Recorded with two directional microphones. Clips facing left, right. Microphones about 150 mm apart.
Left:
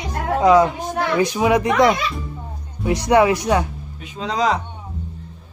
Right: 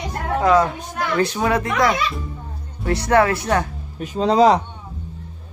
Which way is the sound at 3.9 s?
40° right (ahead or behind).